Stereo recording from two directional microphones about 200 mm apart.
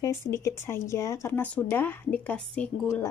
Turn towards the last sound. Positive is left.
turn(degrees=5)  # may be behind; listen again after turning